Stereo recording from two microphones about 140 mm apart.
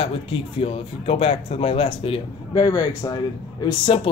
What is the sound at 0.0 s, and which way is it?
Speech, 40° left (ahead or behind).